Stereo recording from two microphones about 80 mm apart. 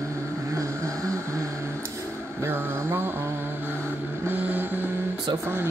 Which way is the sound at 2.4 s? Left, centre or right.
Right.